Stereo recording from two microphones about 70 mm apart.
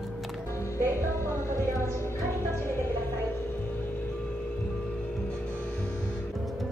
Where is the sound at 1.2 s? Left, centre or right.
Left.